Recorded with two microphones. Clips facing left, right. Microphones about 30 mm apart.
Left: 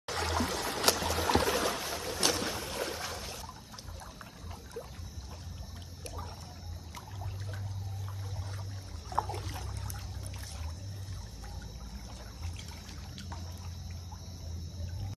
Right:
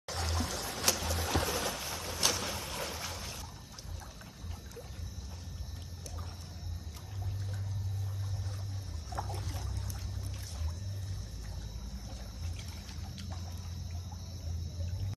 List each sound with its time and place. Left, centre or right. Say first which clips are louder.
0.0 s a sound: left 4 dB; left
0.3 s a sound: left 6 dB; left
0.6 s music: left 3 dB; left
1.1 s boat: left 5 dB; left
1.8 s boat: left 2 dB; centre
9.1 s boat: left 6 dB; left